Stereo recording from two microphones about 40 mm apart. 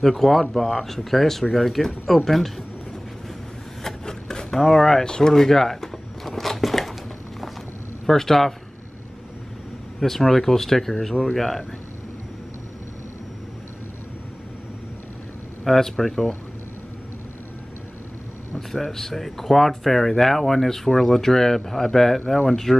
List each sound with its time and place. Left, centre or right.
0.0 s speech: centre
4.0 s rub: centre
4.6 s speech: centre
5.0 s a sound: centre
8.1 s speech: centre
9.9 s speech: centre
15.6 s speech: centre
18.7 s speech: centre